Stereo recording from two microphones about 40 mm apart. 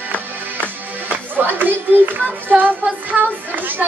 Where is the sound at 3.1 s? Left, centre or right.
Right.